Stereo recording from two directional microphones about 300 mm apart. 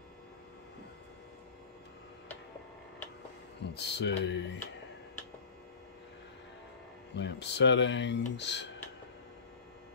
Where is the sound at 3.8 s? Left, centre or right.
Left.